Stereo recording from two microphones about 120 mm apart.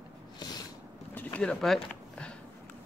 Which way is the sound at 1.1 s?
15° left (ahead or behind).